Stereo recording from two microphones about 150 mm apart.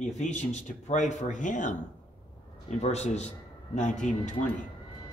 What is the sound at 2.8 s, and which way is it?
A man's voice, 45° left (ahead or behind).